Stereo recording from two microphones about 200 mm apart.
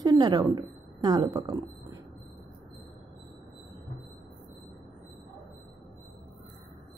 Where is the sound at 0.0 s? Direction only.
20° right (ahead or behind).